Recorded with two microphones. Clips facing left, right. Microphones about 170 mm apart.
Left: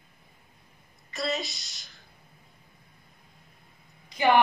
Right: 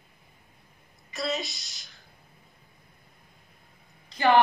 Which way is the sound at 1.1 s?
Centre (ahead or behind).